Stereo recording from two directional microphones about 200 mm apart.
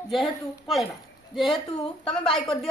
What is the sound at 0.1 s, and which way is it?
A woman's voice, centre (ahead or behind).